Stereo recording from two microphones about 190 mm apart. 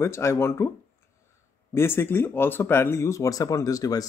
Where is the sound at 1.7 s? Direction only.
15° left (ahead or behind).